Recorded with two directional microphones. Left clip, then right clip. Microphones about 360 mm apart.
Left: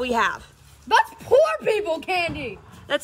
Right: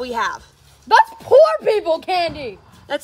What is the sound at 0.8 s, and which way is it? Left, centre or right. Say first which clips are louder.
Speech: right 6 dB; right.